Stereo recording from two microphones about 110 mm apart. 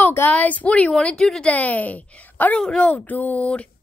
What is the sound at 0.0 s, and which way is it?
A woman's voice, 20° left (ahead or behind).